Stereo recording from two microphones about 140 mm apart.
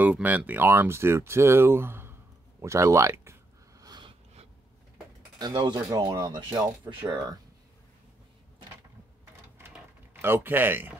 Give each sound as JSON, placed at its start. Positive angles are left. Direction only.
{"t": 0.0, "sound": "speech", "side_deg": -10}
{"t": 3.8, "sound": "a sound", "side_deg": -30}
{"t": 5.4, "sound": "speech", "side_deg": -30}
{"t": 10.2, "sound": "speech", "side_deg": -15}